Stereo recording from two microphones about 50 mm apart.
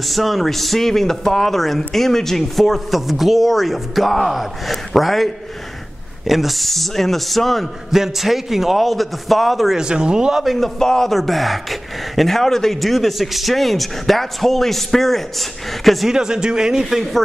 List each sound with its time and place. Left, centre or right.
0.0 s speech: centre
9.8 s a man's voice: centre
10.4 s speech: centre
16.1 s a man's voice: centre